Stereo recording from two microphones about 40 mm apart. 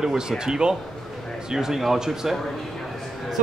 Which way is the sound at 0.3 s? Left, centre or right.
Centre.